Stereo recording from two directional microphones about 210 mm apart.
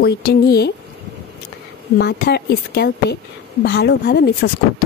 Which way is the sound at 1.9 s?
50° left (ahead or behind).